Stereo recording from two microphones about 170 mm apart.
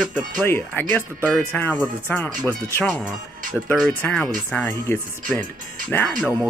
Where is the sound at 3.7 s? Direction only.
5° left (ahead or behind).